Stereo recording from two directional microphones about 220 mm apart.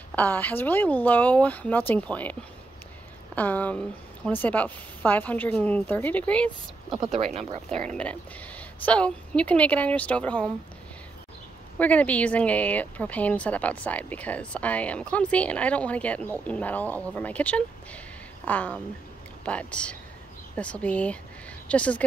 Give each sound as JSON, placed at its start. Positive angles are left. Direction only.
{"t": 0.1, "sound": "speech", "side_deg": 5}
{"t": 3.3, "sound": "speech", "side_deg": 5}
{"t": 7.3, "sound": "speech", "side_deg": -25}
{"t": 8.0, "sound": "a woman's voice", "side_deg": 5}
{"t": 11.8, "sound": "a woman's voice", "side_deg": 5}